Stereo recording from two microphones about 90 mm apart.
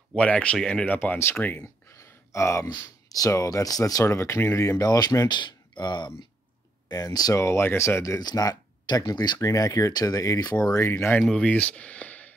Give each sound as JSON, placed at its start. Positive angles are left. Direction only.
{"t": 0.1, "sound": "speech", "side_deg": 15}
{"t": 0.9, "sound": "speech", "side_deg": 25}
{"t": 1.6, "sound": "speech", "side_deg": 35}
{"t": 5.3, "sound": "speech", "side_deg": 55}
{"t": 7.4, "sound": "speech", "side_deg": 30}
{"t": 8.2, "sound": "speech", "side_deg": 45}
{"t": 9.4, "sound": "speech", "side_deg": 40}
{"t": 10.8, "sound": "speech", "side_deg": 30}
{"t": 11.2, "sound": "speech", "side_deg": 10}